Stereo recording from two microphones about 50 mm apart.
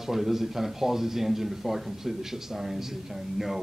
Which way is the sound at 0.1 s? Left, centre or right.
Centre.